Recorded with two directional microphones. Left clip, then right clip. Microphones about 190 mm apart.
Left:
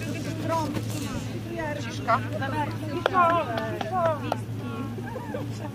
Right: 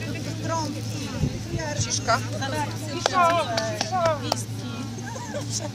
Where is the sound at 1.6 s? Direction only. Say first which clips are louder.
Right 4 dB; 40° right (ahead or behind).